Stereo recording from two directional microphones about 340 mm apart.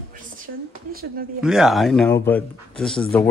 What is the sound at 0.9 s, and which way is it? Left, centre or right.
Speech, right.